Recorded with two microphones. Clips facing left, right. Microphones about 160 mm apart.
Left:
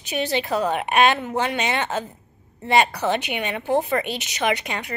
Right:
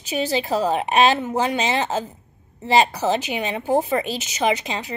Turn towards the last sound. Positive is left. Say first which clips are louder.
# right 2 dB
turn(degrees=-30)  # may be behind; listen again after turning